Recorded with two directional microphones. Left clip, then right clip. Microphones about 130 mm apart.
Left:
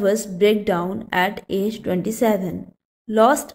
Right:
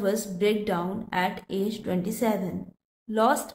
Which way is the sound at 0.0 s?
40° left (ahead or behind).